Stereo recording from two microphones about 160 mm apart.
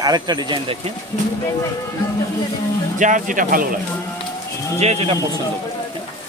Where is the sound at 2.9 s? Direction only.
55° right (ahead or behind).